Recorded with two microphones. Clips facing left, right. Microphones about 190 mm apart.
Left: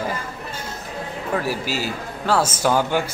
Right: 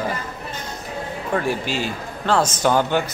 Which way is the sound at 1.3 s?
5° left (ahead or behind).